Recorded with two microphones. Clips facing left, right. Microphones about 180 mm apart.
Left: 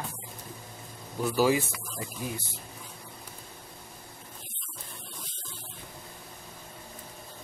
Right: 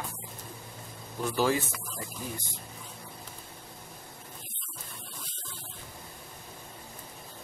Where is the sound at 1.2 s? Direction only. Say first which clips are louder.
Left 3 dB; 10° left (ahead or behind).